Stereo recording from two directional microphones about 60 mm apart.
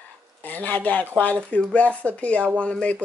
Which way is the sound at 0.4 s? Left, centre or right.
Left.